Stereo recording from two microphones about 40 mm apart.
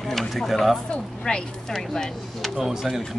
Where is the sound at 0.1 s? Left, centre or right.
Centre.